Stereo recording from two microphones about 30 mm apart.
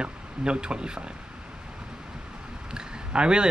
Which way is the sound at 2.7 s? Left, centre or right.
Right.